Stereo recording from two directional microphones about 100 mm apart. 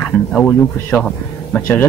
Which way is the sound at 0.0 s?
10° left (ahead or behind).